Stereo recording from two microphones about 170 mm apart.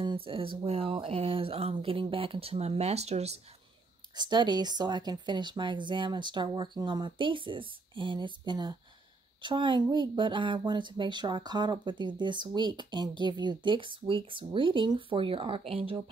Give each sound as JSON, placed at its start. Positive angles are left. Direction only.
{"t": 0.0, "sound": "speech", "side_deg": -30}
{"t": 4.1, "sound": "speech", "side_deg": -25}